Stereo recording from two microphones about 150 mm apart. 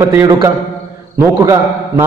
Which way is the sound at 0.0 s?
20° right (ahead or behind).